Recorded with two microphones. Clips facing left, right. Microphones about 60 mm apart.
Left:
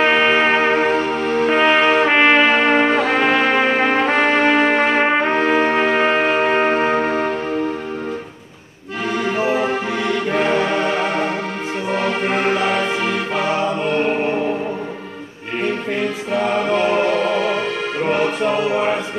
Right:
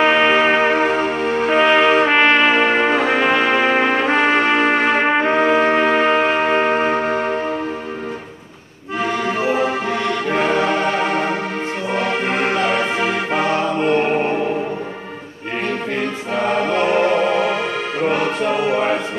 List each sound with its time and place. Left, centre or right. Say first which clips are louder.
0.0 s music: right 1 dB; centre
9.2 s music: left 1 dB; centre
16.4 s choir: right 1 dB; centre
18.1 s music: left 3 dB; centre